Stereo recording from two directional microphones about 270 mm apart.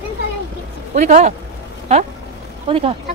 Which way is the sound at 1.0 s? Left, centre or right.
Right.